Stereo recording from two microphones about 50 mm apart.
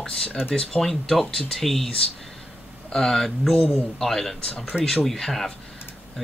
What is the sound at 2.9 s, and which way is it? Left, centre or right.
Speech, centre.